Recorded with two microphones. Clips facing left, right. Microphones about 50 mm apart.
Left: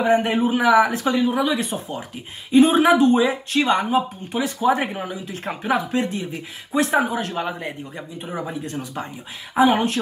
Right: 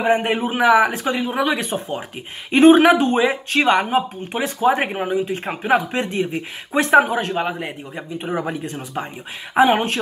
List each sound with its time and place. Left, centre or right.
0.0 s a man's voice: right
1.3 s speech: right
2.5 s speech: right
5.4 s speech: right
7.2 s a man's voice: right
9.5 s speech: right